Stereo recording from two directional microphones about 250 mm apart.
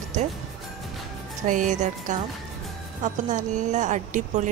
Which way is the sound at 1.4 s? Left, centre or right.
Right.